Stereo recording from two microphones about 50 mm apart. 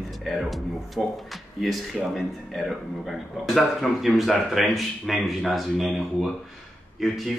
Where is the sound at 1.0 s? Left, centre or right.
Centre.